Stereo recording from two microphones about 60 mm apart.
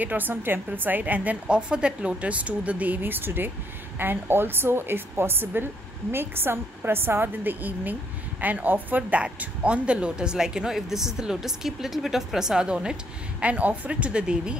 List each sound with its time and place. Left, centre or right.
0.0 s a woman's voice: right; by 12.9 s centre
13.4 s a woman's voice: right